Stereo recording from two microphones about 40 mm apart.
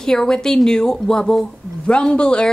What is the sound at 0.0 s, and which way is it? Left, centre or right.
A woman's voice, centre.